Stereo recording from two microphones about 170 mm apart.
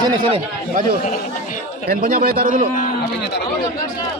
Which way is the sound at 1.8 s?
60° right (ahead or behind).